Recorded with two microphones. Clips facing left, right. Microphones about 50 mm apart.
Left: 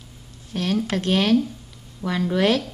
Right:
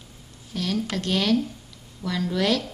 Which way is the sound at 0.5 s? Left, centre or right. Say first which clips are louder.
Left 4 dB; left.